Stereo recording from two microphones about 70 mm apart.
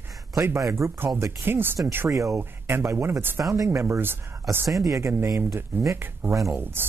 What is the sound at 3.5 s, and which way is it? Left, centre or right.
Speech, right.